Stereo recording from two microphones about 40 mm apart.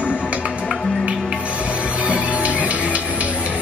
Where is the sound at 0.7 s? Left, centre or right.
Left.